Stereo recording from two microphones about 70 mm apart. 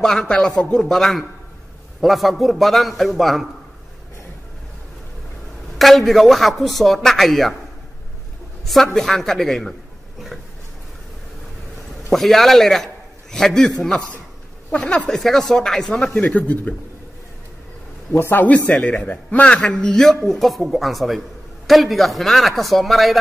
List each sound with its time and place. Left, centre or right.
0.0 s a man's voice: centre
5.8 s a man's voice: centre
8.6 s a man's voice: centre
12.1 s a man's voice: centre
15.0 s a man's voice: centre
16.1 s speech: centre
18.1 s a man's voice: left; by 23.1 s centre